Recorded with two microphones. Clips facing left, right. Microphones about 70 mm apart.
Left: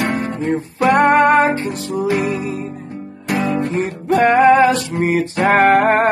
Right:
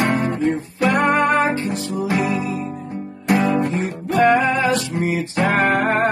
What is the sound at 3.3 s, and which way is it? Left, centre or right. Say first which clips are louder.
Guitar: right 1 dB; right.